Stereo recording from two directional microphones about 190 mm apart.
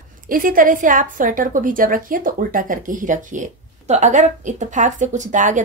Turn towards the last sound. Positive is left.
turn(degrees=-40)  # may be behind; listen again after turning